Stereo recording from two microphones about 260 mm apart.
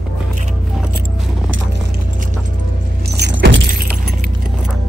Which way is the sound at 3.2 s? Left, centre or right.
Right.